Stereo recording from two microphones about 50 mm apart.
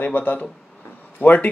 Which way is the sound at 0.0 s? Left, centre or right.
Left.